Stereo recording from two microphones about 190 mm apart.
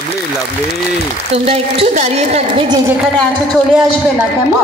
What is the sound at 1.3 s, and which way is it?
A woman's voice, 35° right (ahead or behind).